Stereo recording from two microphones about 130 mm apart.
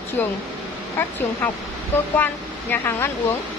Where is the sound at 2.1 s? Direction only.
15° left (ahead or behind).